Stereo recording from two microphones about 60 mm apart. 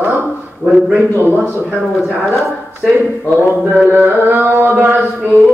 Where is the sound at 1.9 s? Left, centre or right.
Centre.